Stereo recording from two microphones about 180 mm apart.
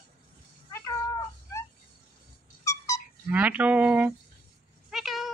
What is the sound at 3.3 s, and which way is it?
Speech, 10° right (ahead or behind).